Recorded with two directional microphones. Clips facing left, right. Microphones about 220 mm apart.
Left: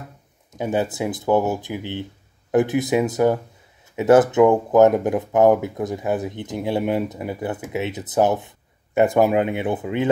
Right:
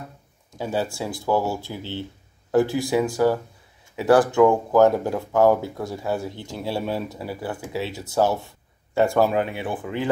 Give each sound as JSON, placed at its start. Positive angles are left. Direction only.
{"t": 0.5, "sound": "speech", "side_deg": 20}